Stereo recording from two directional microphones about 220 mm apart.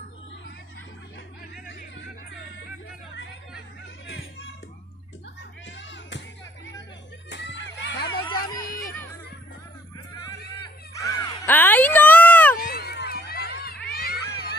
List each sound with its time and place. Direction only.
1.7 s music: 50° left (ahead or behind)
4.1 s music: 55° left (ahead or behind)
5.7 s music: 55° left (ahead or behind)
8.2 s music: 20° left (ahead or behind)
10.6 s music: 20° left (ahead or behind)
11.4 s a sound: 10° left (ahead or behind)
12.5 s run: 45° left (ahead or behind)
13.8 s cat: 45° left (ahead or behind)